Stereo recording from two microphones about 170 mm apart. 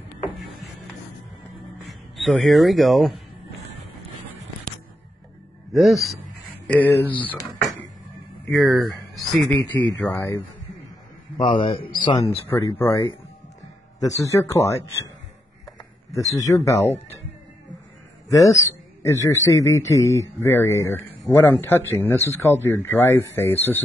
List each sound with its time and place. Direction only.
1.9 s speech: centre (ahead or behind)
5.7 s a man's voice: centre (ahead or behind)
6.7 s speech: 10° left (ahead or behind)
8.5 s a man's voice: centre (ahead or behind)
9.7 s speech: 10° left (ahead or behind)
11.3 s a man's voice: 30° left (ahead or behind)
12.4 s speech: 10° left (ahead or behind)
15.8 s a sound: 20° left (ahead or behind)
16.5 s speech: 15° left (ahead or behind)
18.3 s speech: 20° left (ahead or behind)